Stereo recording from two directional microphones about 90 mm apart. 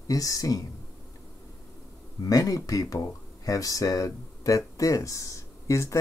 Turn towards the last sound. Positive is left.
turn(degrees=35)  # may be behind; listen again after turning